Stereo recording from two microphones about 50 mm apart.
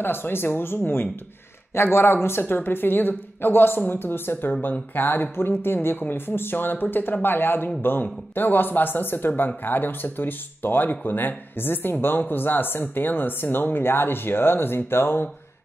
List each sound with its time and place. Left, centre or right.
0.0 s speech: left